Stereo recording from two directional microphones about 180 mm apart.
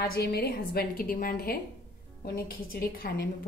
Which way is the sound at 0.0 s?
60° left (ahead or behind).